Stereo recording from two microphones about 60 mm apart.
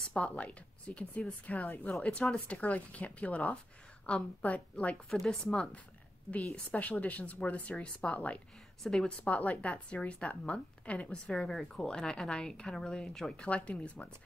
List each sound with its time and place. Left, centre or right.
0.1 s a woman's voice: left
5.2 s speech: centre
6.7 s a woman's voice: left
8.8 s speech: centre
9.3 s a woman's voice: left
11.5 s speech: centre
13.5 s a woman's voice: left